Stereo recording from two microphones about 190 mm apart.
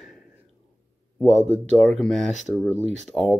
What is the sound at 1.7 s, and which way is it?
Speech, 5° left (ahead or behind).